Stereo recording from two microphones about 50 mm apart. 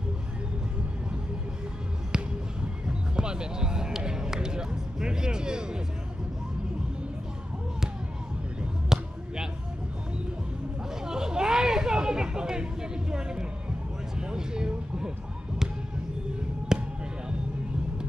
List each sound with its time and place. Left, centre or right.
2.1 s music: centre
8.8 s basketball bounce: centre
11.1 s a sound: centre
14.2 s vehicle: centre
16.7 s basketball bounce: centre